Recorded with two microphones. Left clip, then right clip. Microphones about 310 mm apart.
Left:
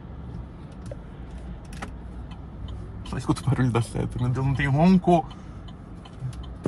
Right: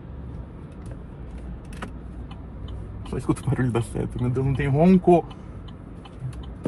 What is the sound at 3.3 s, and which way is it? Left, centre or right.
Speech, left.